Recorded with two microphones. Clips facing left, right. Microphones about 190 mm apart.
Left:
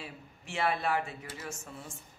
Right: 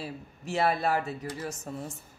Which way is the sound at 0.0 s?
40° right (ahead or behind).